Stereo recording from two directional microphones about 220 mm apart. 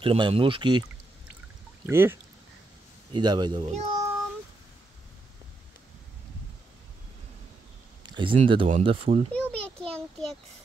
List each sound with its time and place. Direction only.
0.0 s speech: 25° right (ahead or behind)
1.9 s speech: 10° right (ahead or behind)
8.0 s speech: 20° right (ahead or behind)
9.3 s a sound: 5° left (ahead or behind)